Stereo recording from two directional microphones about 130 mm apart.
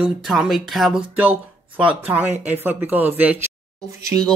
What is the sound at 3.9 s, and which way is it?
Speech, 25° right (ahead or behind).